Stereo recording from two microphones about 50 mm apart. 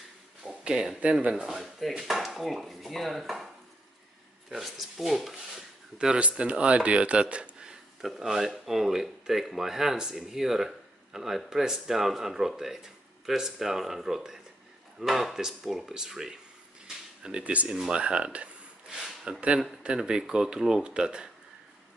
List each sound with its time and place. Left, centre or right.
0.5 s a sound: centre
1.3 s speech: centre
4.5 s speech: centre
5.9 s speech: right
8.2 s speech: centre
18.9 s a sound: centre
19.8 s speech: centre